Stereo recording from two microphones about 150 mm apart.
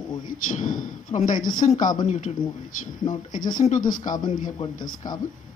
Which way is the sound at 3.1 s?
60° left (ahead or behind).